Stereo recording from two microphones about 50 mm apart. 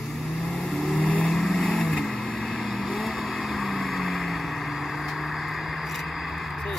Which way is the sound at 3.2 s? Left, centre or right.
Centre.